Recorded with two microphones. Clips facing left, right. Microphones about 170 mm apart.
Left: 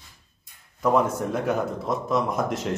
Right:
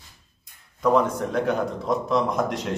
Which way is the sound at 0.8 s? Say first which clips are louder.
Right 1 dB; 5° left (ahead or behind).